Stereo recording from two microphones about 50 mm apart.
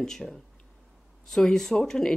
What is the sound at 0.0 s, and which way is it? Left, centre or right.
Speech, centre.